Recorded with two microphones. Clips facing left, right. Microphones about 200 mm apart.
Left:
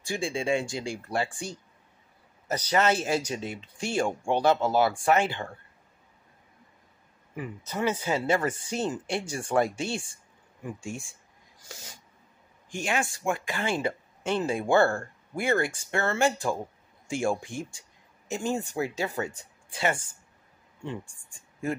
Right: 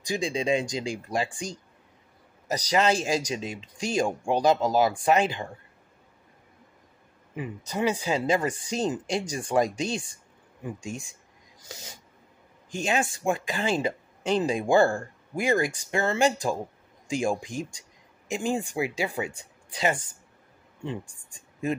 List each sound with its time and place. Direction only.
0.0 s speech: 20° right (ahead or behind)
7.3 s speech: 15° right (ahead or behind)
21.3 s a sound: 20° right (ahead or behind)